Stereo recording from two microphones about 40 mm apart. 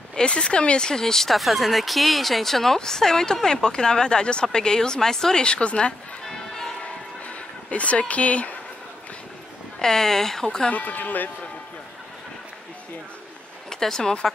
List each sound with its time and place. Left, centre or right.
0.1 s speech: left
6.2 s music: centre
7.2 s a sound: left
8.1 s speech: left
9.8 s speech: centre
10.7 s speech: left
13.7 s speech: centre